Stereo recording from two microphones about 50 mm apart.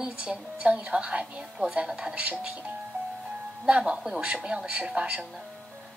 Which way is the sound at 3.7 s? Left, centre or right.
Right.